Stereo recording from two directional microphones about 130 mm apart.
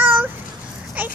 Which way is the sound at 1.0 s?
10° right (ahead or behind).